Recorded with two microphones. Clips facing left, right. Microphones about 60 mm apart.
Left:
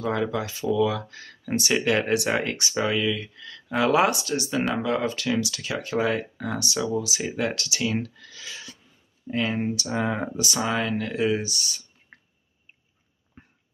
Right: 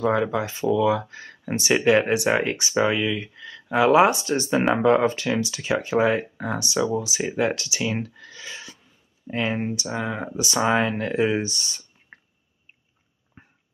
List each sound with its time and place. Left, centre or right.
0.0 s speech: centre
4.2 s speech: right; by 10.0 s centre
10.0 s speech: centre
10.3 s speech: right
12.1 s a sound: right
13.4 s a sound: centre